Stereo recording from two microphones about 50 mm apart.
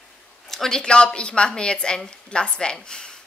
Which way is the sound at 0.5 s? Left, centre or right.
Centre.